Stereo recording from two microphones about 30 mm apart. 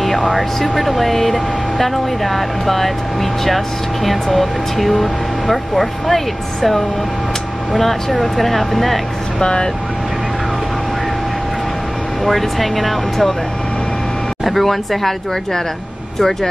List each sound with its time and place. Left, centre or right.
0.0 s speech: centre
9.4 s speech: left
12.3 s speech: centre
14.4 s speech: centre